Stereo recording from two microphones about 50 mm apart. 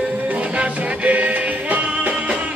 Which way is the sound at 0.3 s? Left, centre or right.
Right.